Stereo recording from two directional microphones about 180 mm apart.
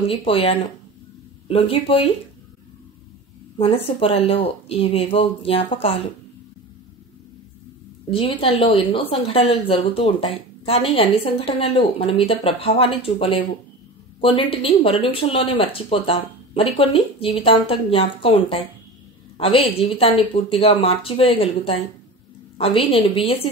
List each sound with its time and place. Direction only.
0.1 s speech: 30° left (ahead or behind)
3.5 s speech: 30° left (ahead or behind)
8.1 s speech: 30° left (ahead or behind)